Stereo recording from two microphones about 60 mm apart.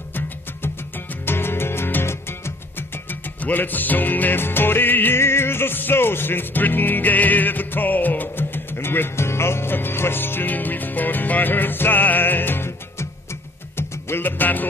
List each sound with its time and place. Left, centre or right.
1.2 s music: left
3.1 s music: left
13.7 s music: left